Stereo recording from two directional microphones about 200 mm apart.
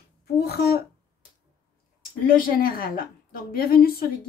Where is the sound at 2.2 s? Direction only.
45° left (ahead or behind).